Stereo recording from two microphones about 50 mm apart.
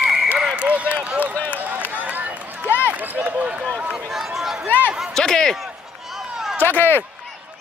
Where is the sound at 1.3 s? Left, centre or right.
Left.